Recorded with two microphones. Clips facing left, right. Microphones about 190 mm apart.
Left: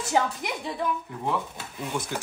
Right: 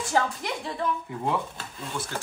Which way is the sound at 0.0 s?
20° left (ahead or behind).